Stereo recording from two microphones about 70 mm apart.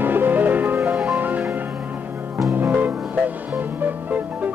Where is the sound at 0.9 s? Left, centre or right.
Centre.